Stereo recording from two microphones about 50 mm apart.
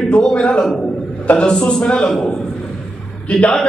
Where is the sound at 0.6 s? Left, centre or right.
Centre.